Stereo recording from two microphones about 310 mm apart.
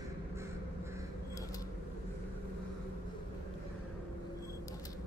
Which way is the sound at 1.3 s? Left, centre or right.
Centre.